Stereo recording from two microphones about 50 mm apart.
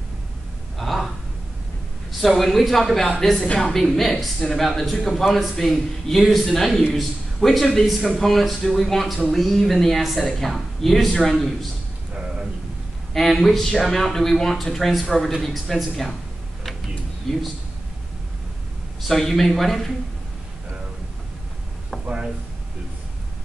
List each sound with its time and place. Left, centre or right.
0.7 s a sound: centre
2.2 s a man's voice: centre
12.1 s a sound: centre
13.1 s speech: centre
17.3 s speech: centre
19.0 s speech: centre